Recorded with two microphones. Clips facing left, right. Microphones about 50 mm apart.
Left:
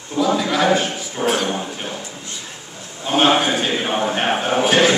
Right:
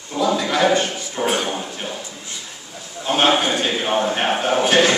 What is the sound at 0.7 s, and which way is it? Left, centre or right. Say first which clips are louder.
Speech: even; centre.